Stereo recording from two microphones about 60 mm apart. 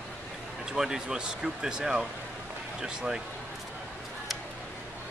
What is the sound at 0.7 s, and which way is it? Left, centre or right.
Speech, centre.